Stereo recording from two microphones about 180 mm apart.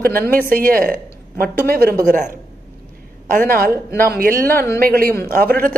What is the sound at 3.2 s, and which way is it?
Speech, 50° right (ahead or behind).